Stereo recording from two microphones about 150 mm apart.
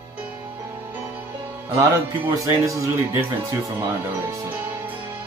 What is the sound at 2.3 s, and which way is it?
Speech, 20° right (ahead or behind).